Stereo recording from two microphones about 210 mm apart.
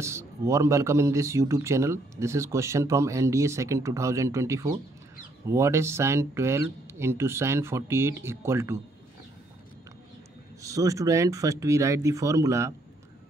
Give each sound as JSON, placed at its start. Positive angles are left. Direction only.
{"t": 0.0, "sound": "speech", "side_deg": -15}
{"t": 10.6, "sound": "speech", "side_deg": -15}